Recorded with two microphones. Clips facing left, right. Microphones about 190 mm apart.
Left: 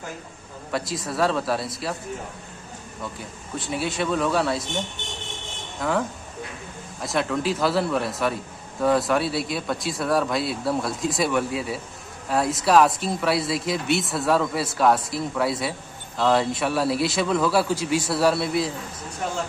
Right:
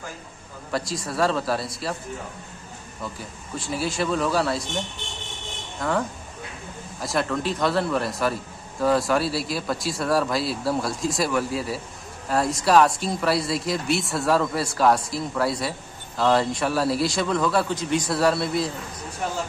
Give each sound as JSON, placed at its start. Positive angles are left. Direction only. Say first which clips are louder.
{"t": 0.7, "sound": "a man's voice", "louder": "even", "side_deg": 0}
{"t": 3.5, "sound": "a man's voice", "louder": "even", "side_deg": 0}
{"t": 5.8, "sound": "a man's voice", "louder": "left 1 dB", "side_deg": 0}